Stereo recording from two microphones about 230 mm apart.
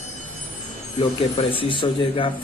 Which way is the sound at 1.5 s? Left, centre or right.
Left.